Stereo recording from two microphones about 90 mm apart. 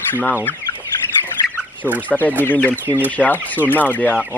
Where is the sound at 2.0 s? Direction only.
15° left (ahead or behind).